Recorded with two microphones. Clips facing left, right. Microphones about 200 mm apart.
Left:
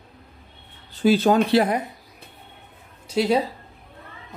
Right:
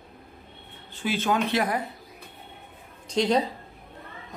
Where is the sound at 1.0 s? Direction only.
35° left (ahead or behind).